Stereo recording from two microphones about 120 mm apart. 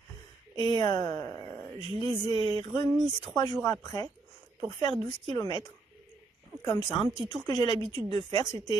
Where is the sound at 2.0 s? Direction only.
Centre (ahead or behind).